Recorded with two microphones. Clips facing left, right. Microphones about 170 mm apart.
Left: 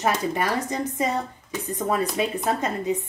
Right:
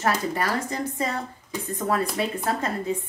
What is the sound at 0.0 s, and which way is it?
Speech, 20° left (ahead or behind).